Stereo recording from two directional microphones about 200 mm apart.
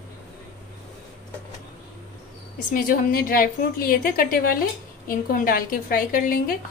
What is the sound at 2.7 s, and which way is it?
A woman's voice, 45° left (ahead or behind).